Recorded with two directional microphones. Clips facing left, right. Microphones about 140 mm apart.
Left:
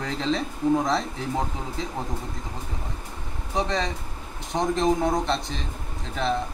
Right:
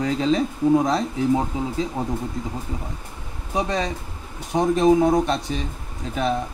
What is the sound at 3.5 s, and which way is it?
Speech, 20° right (ahead or behind).